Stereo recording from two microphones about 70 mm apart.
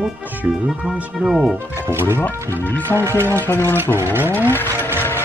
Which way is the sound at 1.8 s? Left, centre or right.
Right.